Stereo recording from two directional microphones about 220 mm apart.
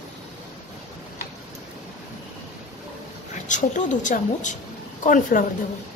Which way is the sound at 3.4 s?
35° left (ahead or behind).